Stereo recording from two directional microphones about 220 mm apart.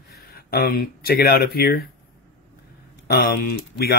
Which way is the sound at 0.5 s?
45° left (ahead or behind).